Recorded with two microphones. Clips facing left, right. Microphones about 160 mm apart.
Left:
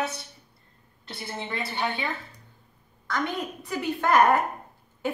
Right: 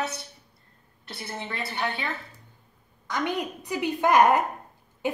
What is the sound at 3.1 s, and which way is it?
A woman's voice, 15° right (ahead or behind).